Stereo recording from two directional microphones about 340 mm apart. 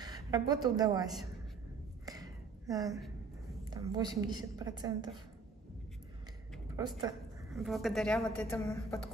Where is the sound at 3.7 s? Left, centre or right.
Centre.